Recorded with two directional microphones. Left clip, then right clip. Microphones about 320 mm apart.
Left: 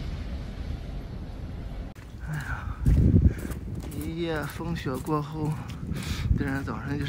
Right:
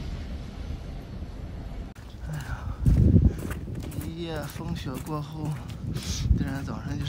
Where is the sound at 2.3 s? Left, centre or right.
Centre.